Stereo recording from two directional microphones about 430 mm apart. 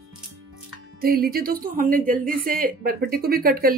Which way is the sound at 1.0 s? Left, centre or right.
Centre.